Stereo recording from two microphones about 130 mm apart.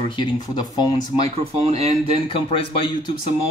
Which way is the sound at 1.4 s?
50° right (ahead or behind).